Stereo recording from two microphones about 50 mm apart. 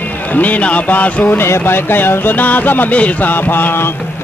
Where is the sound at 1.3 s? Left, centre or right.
Left.